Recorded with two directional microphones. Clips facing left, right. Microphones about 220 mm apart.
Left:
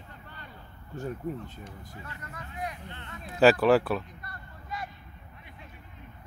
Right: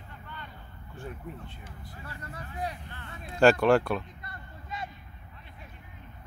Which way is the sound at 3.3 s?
5° left (ahead or behind).